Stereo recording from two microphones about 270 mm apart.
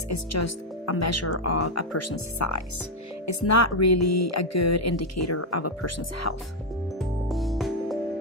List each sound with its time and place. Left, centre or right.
0.1 s speech: left
7.2 s music: centre